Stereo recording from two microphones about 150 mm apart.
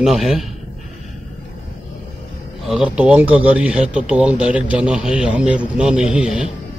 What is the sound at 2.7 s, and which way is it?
Speech, 5° right (ahead or behind).